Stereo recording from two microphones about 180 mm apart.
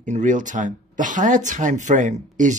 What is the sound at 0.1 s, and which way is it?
Speech, 45° right (ahead or behind).